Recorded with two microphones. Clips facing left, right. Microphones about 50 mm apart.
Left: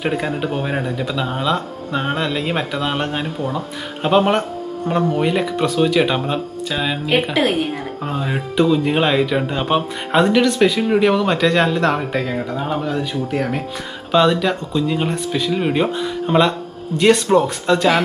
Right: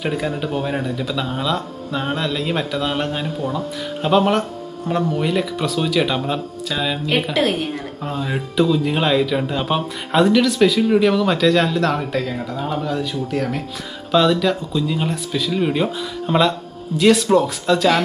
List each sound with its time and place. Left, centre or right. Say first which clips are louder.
0.0 s speech: left 2 dB; centre
8.0 s speech: left 1 dB; centre